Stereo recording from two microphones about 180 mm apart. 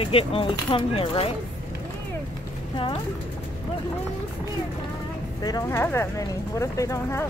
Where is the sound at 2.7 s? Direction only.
30° left (ahead or behind).